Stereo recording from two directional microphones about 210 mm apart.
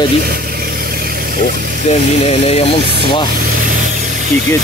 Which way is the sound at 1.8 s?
30° left (ahead or behind).